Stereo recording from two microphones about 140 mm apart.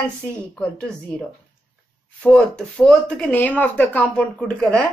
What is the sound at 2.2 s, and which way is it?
Speech, 5° left (ahead or behind).